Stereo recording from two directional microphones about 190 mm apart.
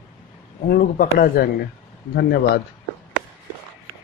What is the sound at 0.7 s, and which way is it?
A man's voice, 55° left (ahead or behind).